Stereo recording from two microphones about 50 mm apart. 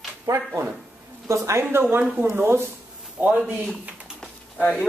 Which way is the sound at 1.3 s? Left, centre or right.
Right.